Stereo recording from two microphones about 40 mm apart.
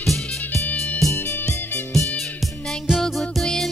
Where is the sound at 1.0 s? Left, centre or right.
Centre.